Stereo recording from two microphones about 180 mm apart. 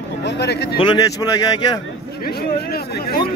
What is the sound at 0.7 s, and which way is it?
A man's voice, 25° left (ahead or behind).